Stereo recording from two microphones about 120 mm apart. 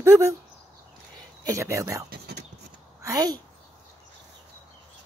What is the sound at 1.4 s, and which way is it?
Speech, 25° right (ahead or behind).